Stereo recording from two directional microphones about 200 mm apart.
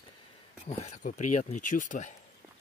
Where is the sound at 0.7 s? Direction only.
35° left (ahead or behind).